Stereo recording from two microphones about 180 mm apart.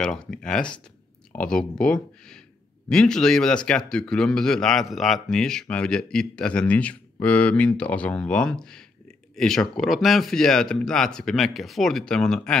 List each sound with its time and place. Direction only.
0.0 s speech: 5° left (ahead or behind)